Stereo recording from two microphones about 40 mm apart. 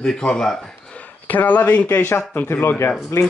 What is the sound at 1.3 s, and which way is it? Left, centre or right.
Speech, left.